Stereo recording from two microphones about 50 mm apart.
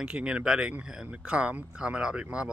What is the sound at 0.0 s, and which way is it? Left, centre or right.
Speech, right.